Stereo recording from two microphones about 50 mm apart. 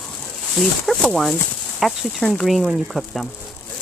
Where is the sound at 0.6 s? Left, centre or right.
Centre.